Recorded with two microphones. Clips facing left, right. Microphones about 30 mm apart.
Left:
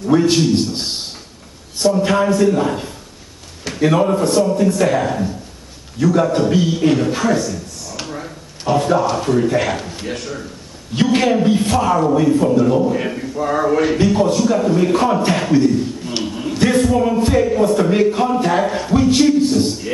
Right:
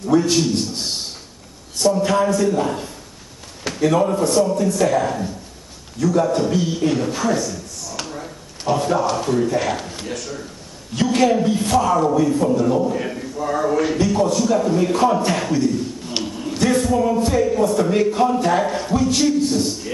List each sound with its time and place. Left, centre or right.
0.1 s a man's voice: left
8.0 s a sound: centre
9.5 s a man's voice: left
9.8 s a man's voice: centre
10.1 s a man's voice: left